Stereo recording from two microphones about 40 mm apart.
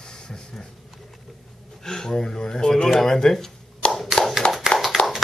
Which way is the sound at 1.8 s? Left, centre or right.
Centre.